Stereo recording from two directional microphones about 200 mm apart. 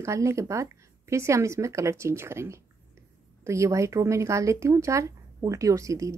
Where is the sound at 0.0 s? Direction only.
15° right (ahead or behind).